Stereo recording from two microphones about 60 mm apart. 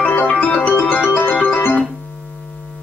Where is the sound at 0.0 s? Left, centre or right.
Left.